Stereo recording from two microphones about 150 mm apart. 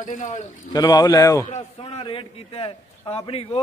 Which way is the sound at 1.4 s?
45° left (ahead or behind).